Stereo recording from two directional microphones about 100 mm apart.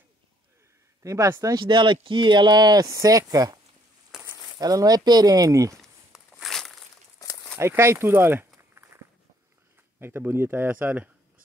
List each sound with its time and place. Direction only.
1.0 s speech: 35° right (ahead or behind)
1.6 s speech: 50° right (ahead or behind); by 5.8 s 35° right (ahead or behind)
6.4 s a sound: centre (ahead or behind)
7.2 s a sound: 40° left (ahead or behind)
7.5 s walk: 25° right (ahead or behind)
9.9 s speech: 20° right (ahead or behind)